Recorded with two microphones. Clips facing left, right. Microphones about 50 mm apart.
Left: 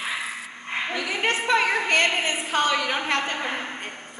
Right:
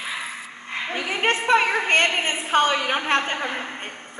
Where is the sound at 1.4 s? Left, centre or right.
Right.